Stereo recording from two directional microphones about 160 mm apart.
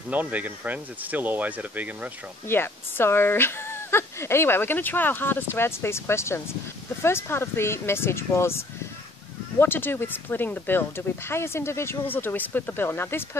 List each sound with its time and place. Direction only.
0.1 s speech: 10° right (ahead or behind)
2.4 s speech: 15° left (ahead or behind)